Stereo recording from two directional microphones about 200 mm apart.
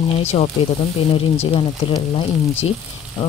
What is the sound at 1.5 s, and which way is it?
Speech, 30° left (ahead or behind).